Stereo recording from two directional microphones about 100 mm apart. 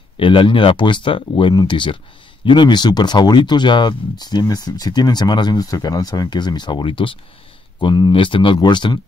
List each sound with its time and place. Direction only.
0.2 s speech: 60° left (ahead or behind)
7.8 s speech: 45° left (ahead or behind)
8.1 s speech: 60° left (ahead or behind)